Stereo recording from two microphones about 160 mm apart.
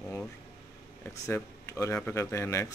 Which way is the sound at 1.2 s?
20° left (ahead or behind).